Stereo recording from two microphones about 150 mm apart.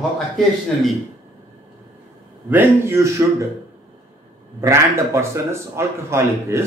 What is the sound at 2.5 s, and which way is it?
Speech, 15° right (ahead or behind).